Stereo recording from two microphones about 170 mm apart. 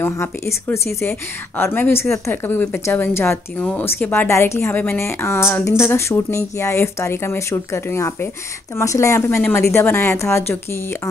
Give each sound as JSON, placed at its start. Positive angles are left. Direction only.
{"t": 0.0, "sound": "a woman's voice", "side_deg": 15}